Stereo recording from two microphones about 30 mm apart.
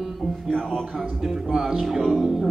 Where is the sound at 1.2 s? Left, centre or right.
Centre.